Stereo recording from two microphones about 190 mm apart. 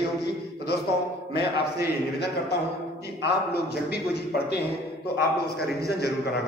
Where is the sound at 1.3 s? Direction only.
60° left (ahead or behind).